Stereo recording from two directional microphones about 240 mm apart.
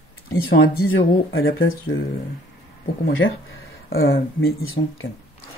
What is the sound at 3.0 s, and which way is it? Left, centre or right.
Speech, left.